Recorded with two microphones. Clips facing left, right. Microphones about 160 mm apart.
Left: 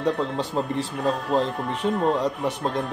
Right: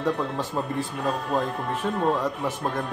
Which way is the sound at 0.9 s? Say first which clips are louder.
Left 4 dB; 5° right (ahead or behind).